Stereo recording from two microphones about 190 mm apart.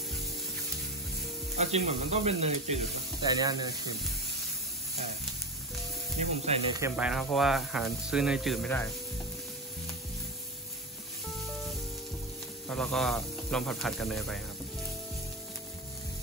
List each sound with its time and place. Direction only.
1.6 s speech: 35° right (ahead or behind)
3.2 s speech: 20° right (ahead or behind)
6.1 s speech: 35° right (ahead or behind)
7.0 s speech: 5° right (ahead or behind)
11.4 s music: centre (ahead or behind)
12.6 s speech: 5° left (ahead or behind)